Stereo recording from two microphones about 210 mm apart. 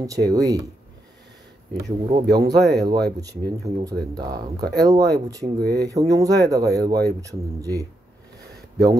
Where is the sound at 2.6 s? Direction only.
50° right (ahead or behind).